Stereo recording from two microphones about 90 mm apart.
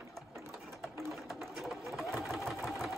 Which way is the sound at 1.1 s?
Centre (ahead or behind).